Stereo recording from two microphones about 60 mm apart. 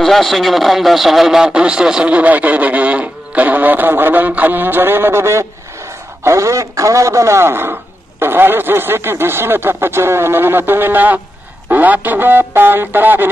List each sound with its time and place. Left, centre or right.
0.0 s a man's voice: centre; by 13.3 s right